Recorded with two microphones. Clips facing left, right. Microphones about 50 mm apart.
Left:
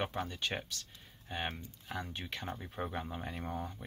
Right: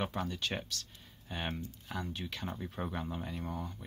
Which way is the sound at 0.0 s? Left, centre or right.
Centre.